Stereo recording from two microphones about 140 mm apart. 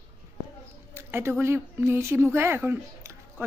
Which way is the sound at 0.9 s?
15° right (ahead or behind).